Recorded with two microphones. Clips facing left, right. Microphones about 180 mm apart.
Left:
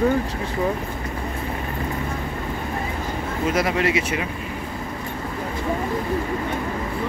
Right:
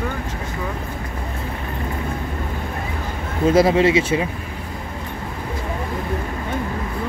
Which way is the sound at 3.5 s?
30° right (ahead or behind).